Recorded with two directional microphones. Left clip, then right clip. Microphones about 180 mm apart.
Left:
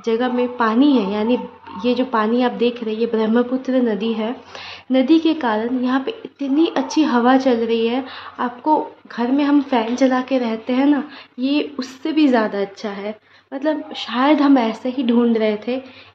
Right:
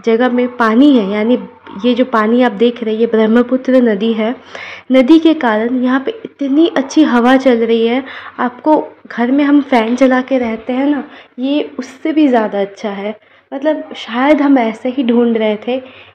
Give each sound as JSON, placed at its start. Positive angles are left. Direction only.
{"t": 0.0, "sound": "a woman's voice", "side_deg": -30}